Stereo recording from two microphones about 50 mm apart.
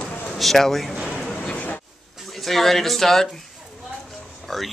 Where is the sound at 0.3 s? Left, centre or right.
Centre.